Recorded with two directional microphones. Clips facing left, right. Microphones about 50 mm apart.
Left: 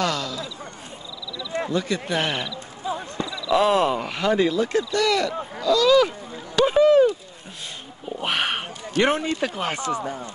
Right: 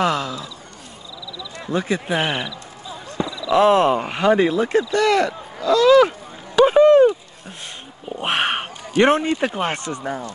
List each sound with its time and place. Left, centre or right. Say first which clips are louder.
0.0 s speech: right 4 dB; right
1.7 s speech: right 6 dB; right
2.8 s basketball bounce: left 8 dB; left
3.3 s a sound: even; centre
3.5 s speech: right 4 dB; right
6.5 s a sound: right 4 dB; right
9.8 s speech: left 3 dB; centre